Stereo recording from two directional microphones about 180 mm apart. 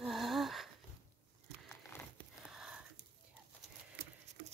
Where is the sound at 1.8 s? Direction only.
10° left (ahead or behind).